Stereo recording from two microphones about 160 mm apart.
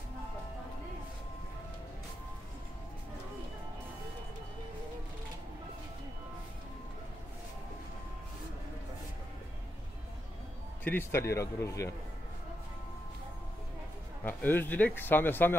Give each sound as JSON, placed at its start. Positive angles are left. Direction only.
{"t": 10.8, "sound": "a man's voice", "side_deg": 10}
{"t": 14.2, "sound": "a man's voice", "side_deg": 10}